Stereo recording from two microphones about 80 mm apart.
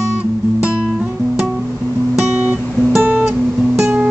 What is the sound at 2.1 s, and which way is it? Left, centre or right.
Guitar, centre.